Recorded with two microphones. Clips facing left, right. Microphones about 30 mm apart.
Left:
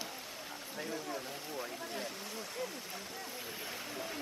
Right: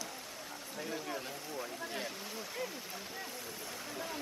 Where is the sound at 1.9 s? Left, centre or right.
Centre.